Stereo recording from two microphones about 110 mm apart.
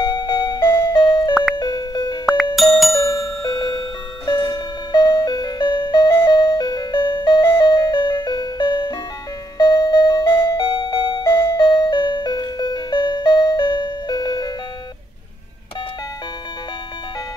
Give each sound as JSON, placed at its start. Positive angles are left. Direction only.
{"t": 0.0, "sound": "music", "side_deg": 40}
{"t": 2.5, "sound": "music", "side_deg": 0}
{"t": 3.4, "sound": "music", "side_deg": 40}